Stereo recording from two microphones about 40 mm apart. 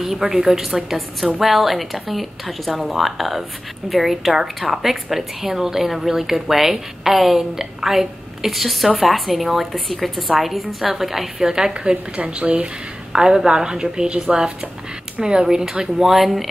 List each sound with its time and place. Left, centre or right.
0.0 s a woman's voice: centre
12.2 s speech: right
13.1 s a woman's voice: centre
15.4 s a woman's voice: centre